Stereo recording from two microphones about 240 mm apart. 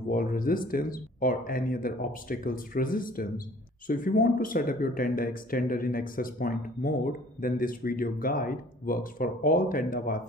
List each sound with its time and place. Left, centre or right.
0.1 s speech: left